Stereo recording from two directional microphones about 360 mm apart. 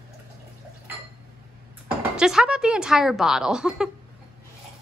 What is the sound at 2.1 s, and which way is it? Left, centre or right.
A woman's voice, centre.